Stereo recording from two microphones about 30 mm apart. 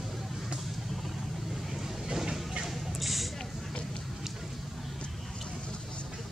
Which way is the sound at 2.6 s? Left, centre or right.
Centre.